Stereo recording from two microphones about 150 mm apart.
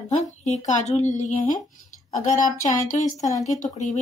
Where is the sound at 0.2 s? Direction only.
50° left (ahead or behind).